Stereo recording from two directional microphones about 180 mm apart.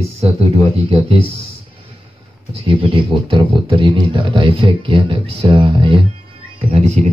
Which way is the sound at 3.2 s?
30° right (ahead or behind).